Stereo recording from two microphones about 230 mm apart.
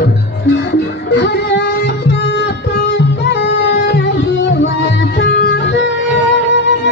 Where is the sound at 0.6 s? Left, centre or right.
Left.